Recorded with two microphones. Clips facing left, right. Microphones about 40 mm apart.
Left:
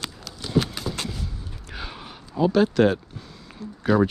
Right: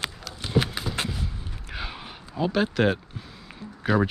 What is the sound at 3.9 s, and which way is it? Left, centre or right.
Speech, centre.